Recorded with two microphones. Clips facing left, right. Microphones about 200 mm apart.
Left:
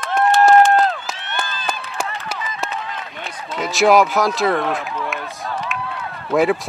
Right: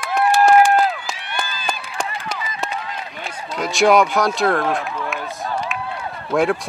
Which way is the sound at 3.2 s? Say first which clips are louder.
Even; centre (ahead or behind).